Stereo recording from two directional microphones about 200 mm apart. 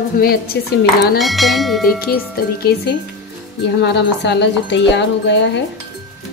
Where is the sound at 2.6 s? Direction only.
50° left (ahead or behind).